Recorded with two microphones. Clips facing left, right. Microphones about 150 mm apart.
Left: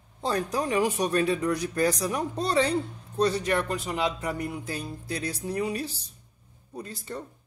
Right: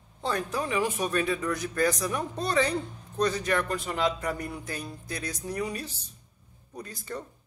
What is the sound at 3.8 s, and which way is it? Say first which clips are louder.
Speech: even; 10° left (ahead or behind).